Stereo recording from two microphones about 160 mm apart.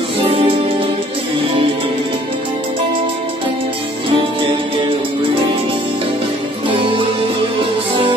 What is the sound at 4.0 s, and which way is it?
Music, 30° right (ahead or behind).